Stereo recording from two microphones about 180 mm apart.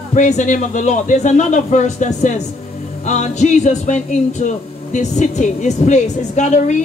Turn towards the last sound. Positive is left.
turn(degrees=40)  # may be behind; listen again after turning